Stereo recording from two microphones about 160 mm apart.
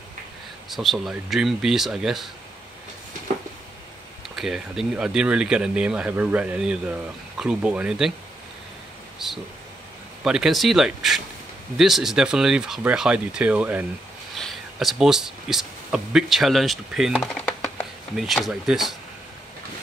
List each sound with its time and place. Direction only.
0.7 s speech: centre (ahead or behind)
4.4 s speech: 5° right (ahead or behind)
10.2 s speech: 5° right (ahead or behind)